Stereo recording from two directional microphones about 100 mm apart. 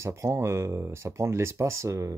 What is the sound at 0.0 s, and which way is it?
Speech, 30° right (ahead or behind).